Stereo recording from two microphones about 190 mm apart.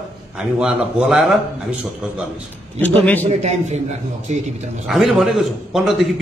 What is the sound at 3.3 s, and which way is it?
A man's voice, 35° right (ahead or behind).